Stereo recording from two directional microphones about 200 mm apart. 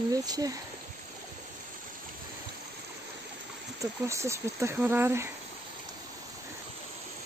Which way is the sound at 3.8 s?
15° right (ahead or behind).